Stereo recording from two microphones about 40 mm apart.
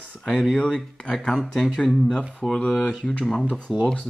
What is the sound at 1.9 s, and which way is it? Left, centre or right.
Speech, centre.